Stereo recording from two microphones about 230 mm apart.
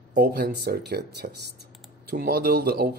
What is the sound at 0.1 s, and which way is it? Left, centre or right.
Speech, right.